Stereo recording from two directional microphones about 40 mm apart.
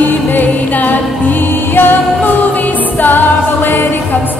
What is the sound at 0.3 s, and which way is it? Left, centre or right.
Music, left.